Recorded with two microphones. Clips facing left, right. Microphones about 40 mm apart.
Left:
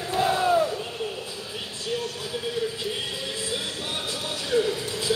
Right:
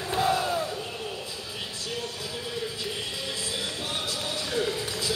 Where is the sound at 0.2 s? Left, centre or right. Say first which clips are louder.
Left 4 dB; left.